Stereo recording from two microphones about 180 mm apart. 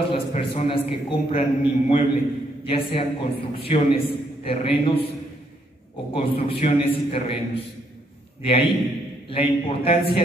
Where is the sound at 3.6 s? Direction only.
30° left (ahead or behind).